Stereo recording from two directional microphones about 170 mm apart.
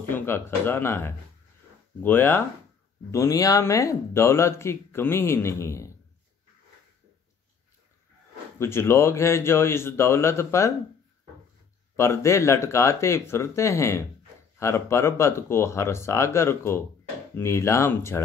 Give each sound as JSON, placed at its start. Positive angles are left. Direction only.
{"t": 0.1, "sound": "speech", "side_deg": 10}
{"t": 8.5, "sound": "speech", "side_deg": 15}
{"t": 12.0, "sound": "speech", "side_deg": 15}